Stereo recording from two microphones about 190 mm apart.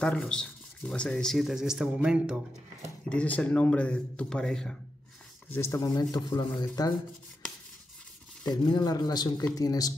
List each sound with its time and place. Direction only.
0.0 s speech: 5° left (ahead or behind)
3.1 s speech: 5° left (ahead or behind)
5.5 s speech: 15° left (ahead or behind)
8.5 s speech: 20° left (ahead or behind)